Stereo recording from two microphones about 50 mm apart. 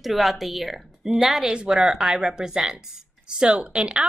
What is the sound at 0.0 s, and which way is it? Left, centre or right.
Speech, centre.